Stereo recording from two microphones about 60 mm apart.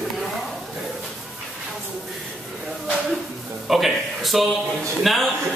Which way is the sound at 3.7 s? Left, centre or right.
Centre.